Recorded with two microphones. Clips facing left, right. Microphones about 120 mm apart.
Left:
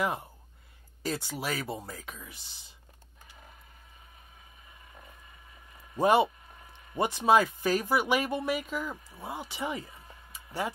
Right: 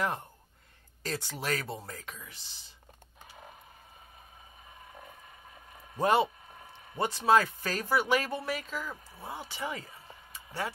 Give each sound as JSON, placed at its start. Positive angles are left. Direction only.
{"t": 0.0, "sound": "speech", "side_deg": 5}
{"t": 5.9, "sound": "speech", "side_deg": 10}
{"t": 10.3, "sound": "a sound", "side_deg": 15}